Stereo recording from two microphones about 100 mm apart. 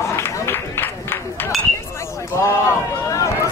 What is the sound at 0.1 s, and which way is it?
Run, 25° left (ahead or behind).